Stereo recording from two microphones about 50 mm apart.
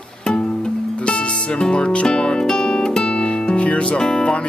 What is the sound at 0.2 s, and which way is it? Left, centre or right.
Music, centre.